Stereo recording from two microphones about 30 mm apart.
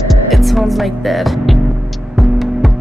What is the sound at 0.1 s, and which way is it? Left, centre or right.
Music, centre.